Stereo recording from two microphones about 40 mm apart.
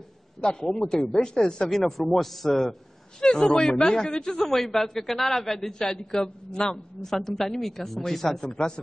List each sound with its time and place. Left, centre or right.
0.4 s a man's voice: left
1.7 s a man's voice: centre
3.2 s a man's voice: centre
7.1 s a man's voice: centre